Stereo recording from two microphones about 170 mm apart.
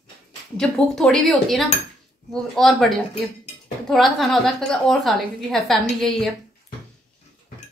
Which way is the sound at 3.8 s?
Centre (ahead or behind).